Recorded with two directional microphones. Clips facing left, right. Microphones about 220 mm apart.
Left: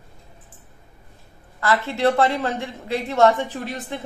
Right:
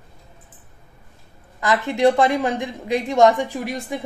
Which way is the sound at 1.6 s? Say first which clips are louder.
Right 3 dB; 15° right (ahead or behind).